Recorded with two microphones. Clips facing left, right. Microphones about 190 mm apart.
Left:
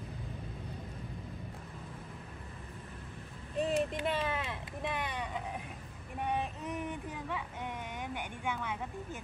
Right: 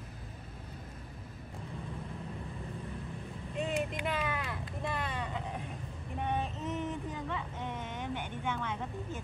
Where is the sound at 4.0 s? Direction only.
30° left (ahead or behind).